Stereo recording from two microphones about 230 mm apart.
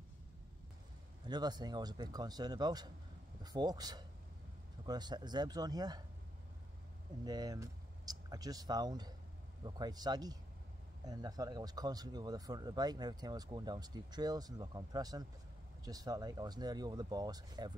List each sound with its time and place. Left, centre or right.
1.2 s speech: centre
7.2 s speech: centre